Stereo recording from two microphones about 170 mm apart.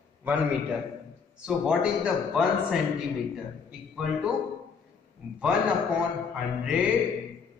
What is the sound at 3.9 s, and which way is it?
Speech, 5° right (ahead or behind).